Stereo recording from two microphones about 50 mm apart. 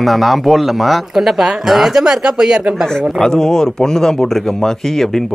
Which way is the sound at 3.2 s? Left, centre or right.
Centre.